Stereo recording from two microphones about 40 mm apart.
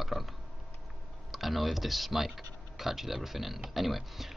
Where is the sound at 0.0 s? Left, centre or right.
Centre.